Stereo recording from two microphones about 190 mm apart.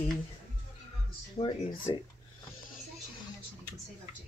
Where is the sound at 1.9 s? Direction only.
20° left (ahead or behind).